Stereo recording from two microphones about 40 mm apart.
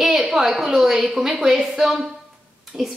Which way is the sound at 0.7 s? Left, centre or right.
Centre.